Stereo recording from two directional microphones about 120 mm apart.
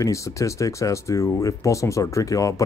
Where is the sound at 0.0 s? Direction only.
25° left (ahead or behind).